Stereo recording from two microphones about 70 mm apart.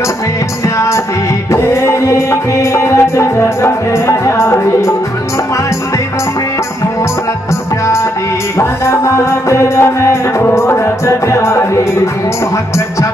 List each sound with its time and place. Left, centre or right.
0.7 s music: left
8.5 s music: left